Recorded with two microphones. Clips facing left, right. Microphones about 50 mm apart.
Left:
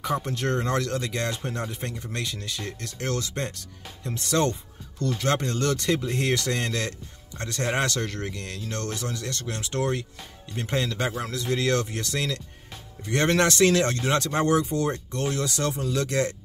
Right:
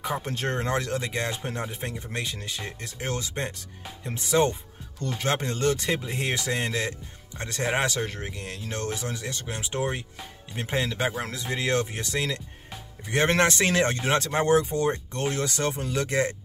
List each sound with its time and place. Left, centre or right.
0.2 s speech: right